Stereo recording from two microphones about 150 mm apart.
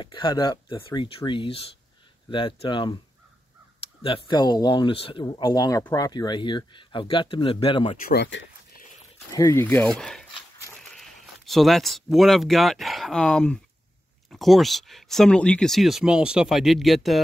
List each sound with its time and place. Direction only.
0.0 s speech: 30° left (ahead or behind)
4.0 s speech: 35° left (ahead or behind)
8.0 s speech: 90° left
9.3 s speech: 20° left (ahead or behind); by 17.2 s centre (ahead or behind)